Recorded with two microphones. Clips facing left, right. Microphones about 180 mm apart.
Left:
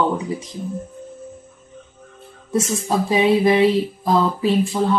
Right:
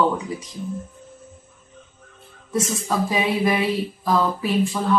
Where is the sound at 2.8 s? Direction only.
25° left (ahead or behind).